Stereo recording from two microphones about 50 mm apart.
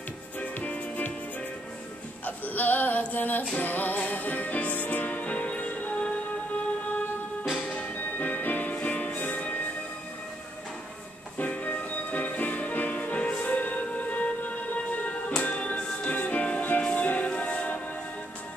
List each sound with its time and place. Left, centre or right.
0.4 s music: left
2.2 s a sound: left
3.5 s music: left
11.3 s music: left